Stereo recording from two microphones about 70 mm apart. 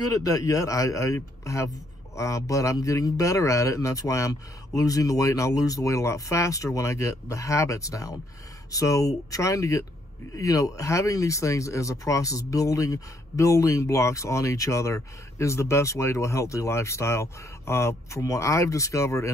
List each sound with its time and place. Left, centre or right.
0.0 s speech: left